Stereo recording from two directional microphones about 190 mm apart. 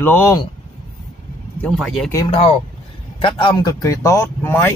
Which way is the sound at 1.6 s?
Centre (ahead or behind).